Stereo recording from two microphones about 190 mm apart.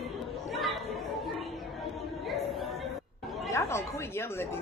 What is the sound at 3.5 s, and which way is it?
Speech, 15° left (ahead or behind).